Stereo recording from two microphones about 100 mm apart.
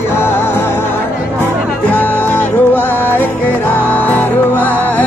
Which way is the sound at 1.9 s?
20° left (ahead or behind).